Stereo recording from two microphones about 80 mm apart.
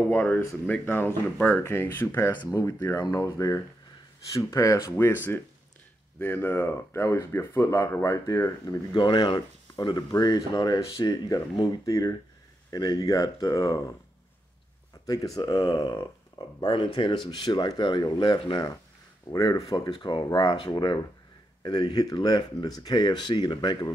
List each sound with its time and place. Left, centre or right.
0.1 s speech: centre; by 4.9 s left
4.9 s speech: left
8.9 s speech: left
10.1 s speech: left
12.7 s speech: left
13.1 s speech: left
15.0 s speech: left
15.8 s speech: left
19.3 s speech: left
20.0 s speech: left
20.3 s speech: left